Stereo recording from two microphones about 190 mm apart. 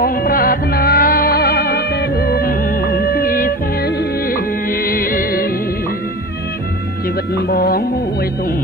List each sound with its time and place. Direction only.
0.2 s music: 50° left (ahead or behind)